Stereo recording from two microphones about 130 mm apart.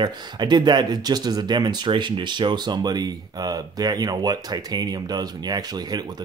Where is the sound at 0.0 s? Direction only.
35° right (ahead or behind).